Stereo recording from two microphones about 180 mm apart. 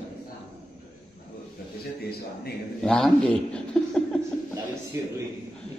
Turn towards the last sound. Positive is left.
turn(degrees=-15)  # may be behind; listen again after turning